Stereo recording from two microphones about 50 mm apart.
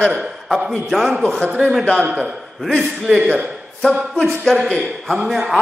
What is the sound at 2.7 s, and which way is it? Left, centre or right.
Speech, centre.